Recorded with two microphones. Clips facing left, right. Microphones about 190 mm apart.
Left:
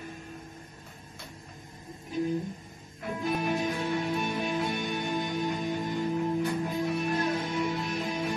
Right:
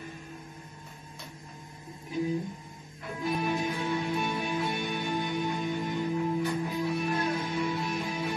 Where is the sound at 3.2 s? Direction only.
50° left (ahead or behind).